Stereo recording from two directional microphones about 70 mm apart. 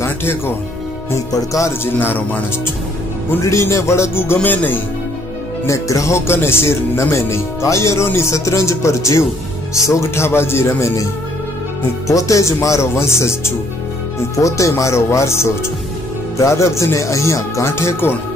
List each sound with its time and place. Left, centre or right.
0.0 s speech: left
1.3 s speech: left
2.0 s speech: left
3.3 s music: left
4.4 s speech: left
5.7 s speech: left
12.1 s speech: left